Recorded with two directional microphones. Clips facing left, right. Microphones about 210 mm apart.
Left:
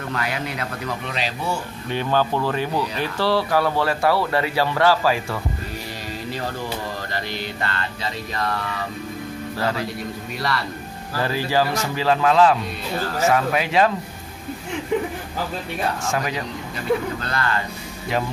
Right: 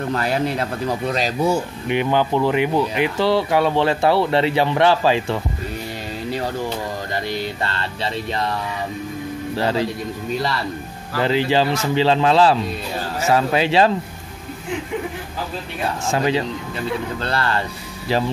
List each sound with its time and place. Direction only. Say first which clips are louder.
0.1 s speech: right 6 dB; 35° right (ahead or behind)
1.9 s speech: right 2 dB; 15° right (ahead or behind)
7.6 s speech: right 2 dB; 25° right (ahead or behind)
9.6 s speech: right 4 dB; 25° right (ahead or behind)
11.1 s speech: right 4 dB; 20° right (ahead or behind)
16.1 s speech: right 5 dB; 25° right (ahead or behind)